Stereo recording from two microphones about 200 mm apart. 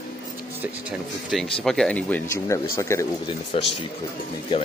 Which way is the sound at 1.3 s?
Centre (ahead or behind).